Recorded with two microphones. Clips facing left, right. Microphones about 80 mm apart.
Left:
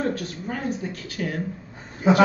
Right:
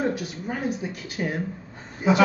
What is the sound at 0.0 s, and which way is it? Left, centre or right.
A man's voice, centre.